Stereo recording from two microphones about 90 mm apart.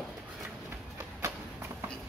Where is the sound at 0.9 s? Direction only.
30° right (ahead or behind).